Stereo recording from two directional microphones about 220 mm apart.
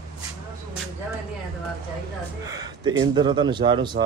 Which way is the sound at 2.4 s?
15° right (ahead or behind).